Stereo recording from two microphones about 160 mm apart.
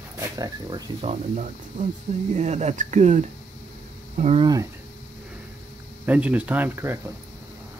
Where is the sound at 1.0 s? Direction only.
45° right (ahead or behind).